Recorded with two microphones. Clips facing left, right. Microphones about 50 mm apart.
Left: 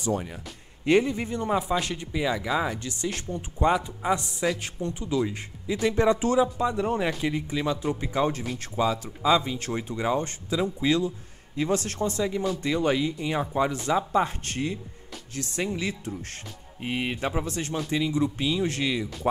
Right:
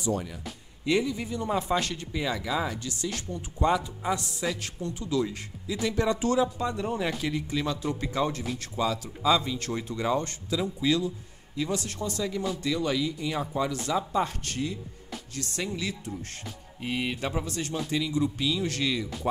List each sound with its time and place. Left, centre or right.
0.8 s a man's voice: left
1.9 s speech: centre
2.8 s speech: left; by 6.8 s centre
6.8 s speech: left
12.1 s speech: left